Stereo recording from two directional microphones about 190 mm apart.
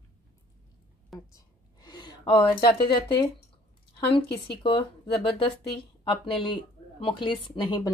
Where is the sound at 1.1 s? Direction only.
20° left (ahead or behind).